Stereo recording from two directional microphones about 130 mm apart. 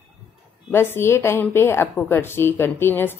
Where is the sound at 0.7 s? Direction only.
15° left (ahead or behind).